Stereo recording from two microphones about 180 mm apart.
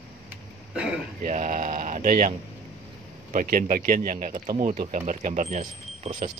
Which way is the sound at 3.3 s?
50° right (ahead or behind).